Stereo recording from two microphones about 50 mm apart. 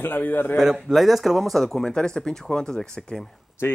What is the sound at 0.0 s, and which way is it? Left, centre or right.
Speech, left.